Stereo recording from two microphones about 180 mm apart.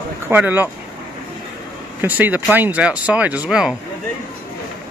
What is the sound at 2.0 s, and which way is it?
Speech, 10° right (ahead or behind).